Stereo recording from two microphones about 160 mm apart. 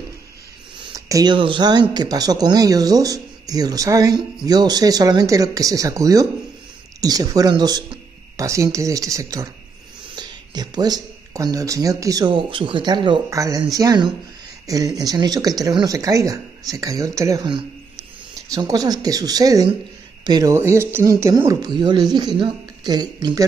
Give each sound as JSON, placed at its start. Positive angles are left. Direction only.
{"t": 0.9, "sound": "speech", "side_deg": -20}